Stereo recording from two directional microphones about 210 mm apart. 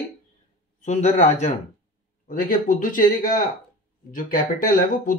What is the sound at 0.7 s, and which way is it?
Speech, 35° left (ahead or behind).